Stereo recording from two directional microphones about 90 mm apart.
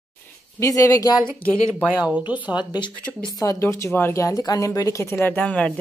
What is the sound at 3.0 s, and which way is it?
Speech, 10° left (ahead or behind).